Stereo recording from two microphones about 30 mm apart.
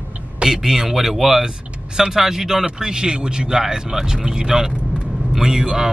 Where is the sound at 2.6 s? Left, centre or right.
Right.